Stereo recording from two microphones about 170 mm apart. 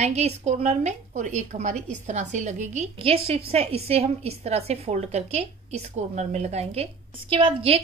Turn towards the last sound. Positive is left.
turn(degrees=-35)  # may be behind; listen again after turning